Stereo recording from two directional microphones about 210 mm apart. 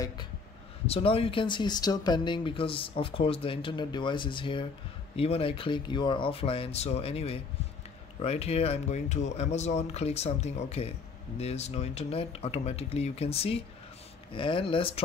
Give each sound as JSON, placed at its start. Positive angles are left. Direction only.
{"t": 0.8, "sound": "speech", "side_deg": 25}